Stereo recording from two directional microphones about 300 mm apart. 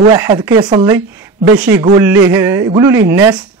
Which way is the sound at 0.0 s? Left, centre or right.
Centre.